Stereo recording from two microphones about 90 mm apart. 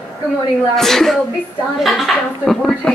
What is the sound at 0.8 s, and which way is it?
Speech, 5° left (ahead or behind).